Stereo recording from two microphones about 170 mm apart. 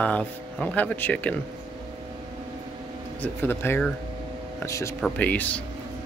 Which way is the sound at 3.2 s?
15° left (ahead or behind).